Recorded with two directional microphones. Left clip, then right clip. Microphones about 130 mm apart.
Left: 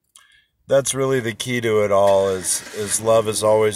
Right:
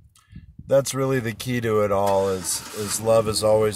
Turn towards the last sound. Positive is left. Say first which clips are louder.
# left 3 dB
turn(degrees=-15)  # may be behind; listen again after turning